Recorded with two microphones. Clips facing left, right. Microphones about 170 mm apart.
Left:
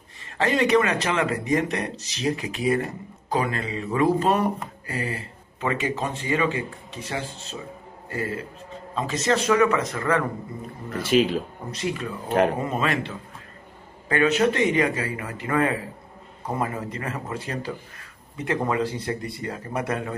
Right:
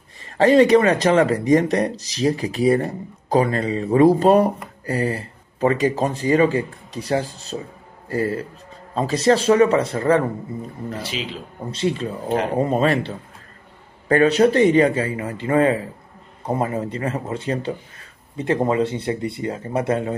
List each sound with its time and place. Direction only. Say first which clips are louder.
0.4 s speech: right 7 dB; 35° right (ahead or behind)
11.0 s a man's voice: left 14 dB; 50° left (ahead or behind)
11.7 s speech: right 6 dB; 30° right (ahead or behind)